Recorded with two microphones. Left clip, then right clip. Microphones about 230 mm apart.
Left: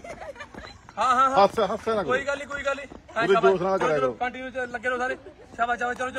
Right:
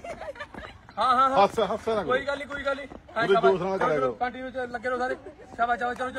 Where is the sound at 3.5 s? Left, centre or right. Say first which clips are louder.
Left 2 dB; left.